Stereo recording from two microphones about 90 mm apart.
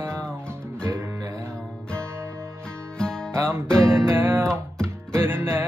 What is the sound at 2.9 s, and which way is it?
Music, 10° left (ahead or behind).